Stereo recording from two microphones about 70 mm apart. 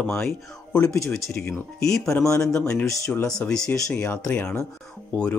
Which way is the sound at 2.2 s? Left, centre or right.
Left.